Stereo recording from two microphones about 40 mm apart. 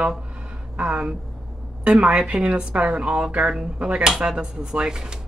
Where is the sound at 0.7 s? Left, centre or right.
Right.